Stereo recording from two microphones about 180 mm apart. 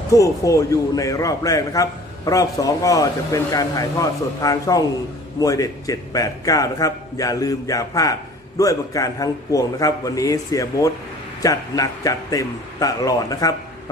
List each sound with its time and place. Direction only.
0.1 s a man's voice: 20° left (ahead or behind)